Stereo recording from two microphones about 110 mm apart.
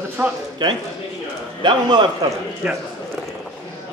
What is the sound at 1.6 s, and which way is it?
Speech, 45° right (ahead or behind).